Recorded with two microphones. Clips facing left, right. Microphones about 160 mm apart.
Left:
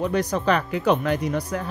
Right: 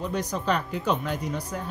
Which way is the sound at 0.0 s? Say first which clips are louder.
Left 6 dB; 65° left (ahead or behind).